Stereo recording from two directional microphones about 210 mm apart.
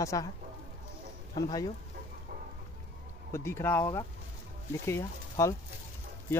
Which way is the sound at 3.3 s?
10° left (ahead or behind).